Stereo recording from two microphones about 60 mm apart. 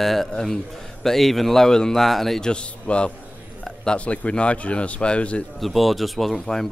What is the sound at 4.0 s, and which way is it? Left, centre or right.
Speech, centre.